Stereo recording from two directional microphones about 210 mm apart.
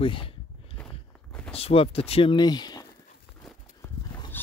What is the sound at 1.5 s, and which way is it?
Speech, 25° left (ahead or behind).